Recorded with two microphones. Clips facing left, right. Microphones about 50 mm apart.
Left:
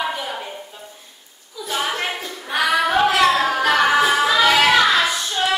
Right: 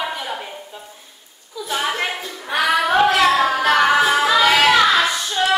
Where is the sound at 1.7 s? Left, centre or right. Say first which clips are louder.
Right 1 dB; centre.